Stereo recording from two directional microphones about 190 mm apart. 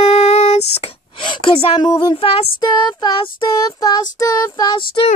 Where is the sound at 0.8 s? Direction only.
30° left (ahead or behind).